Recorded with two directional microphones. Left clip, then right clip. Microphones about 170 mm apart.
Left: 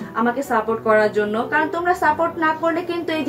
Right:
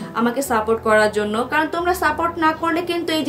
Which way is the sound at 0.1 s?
20° right (ahead or behind).